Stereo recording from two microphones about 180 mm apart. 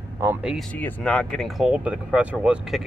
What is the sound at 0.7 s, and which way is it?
Speech, 10° left (ahead or behind).